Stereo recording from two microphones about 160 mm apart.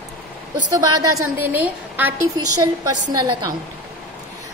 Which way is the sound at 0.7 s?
25° right (ahead or behind).